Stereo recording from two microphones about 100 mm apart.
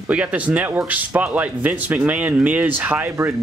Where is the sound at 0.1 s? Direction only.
15° right (ahead or behind).